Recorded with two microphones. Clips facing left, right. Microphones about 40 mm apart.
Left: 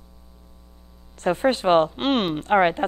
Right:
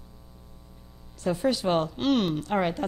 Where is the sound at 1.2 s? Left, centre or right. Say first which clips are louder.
Left 5 dB; left.